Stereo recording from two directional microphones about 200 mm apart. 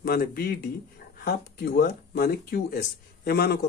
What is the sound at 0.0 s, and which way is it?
A man's voice, 50° left (ahead or behind).